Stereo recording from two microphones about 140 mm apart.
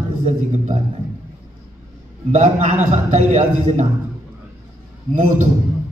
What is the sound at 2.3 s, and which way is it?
A man's voice, 65° right (ahead or behind).